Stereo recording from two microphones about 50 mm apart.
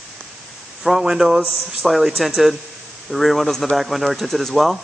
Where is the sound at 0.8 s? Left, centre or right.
Centre.